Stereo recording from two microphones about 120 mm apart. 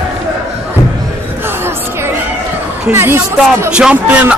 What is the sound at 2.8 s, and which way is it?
Speech, 20° right (ahead or behind).